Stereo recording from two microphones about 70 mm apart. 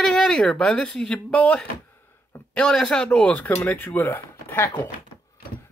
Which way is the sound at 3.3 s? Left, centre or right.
Centre.